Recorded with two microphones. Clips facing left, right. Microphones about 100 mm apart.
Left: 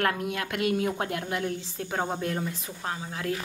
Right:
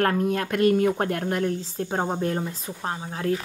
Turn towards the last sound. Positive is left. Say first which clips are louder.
# right 5 dB
turn(degrees=-30)  # may be behind; listen again after turning